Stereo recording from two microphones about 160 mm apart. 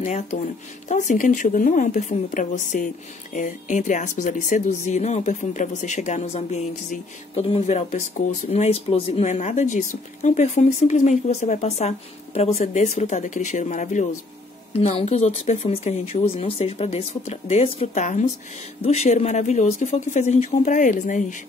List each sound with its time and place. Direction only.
0.0 s speech: 50° left (ahead or behind)
14.7 s speech: 40° left (ahead or behind)